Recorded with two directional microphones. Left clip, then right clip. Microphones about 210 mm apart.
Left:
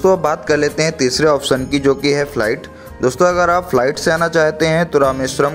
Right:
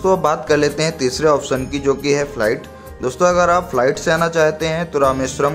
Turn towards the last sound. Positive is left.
turn(degrees=20)  # may be behind; listen again after turning